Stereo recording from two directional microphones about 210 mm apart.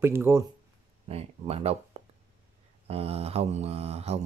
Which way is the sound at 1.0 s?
30° right (ahead or behind).